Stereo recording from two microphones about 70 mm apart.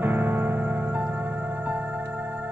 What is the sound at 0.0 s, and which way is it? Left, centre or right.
Music, right.